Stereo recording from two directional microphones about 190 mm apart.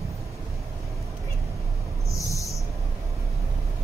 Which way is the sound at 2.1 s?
15° left (ahead or behind).